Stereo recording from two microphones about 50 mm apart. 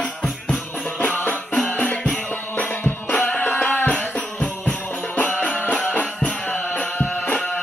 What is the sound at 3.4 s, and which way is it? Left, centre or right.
Music, left.